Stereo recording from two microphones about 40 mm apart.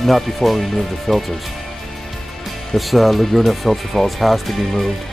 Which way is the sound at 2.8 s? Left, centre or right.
Centre.